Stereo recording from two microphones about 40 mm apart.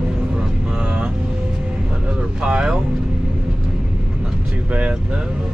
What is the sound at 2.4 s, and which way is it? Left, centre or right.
Speech, right.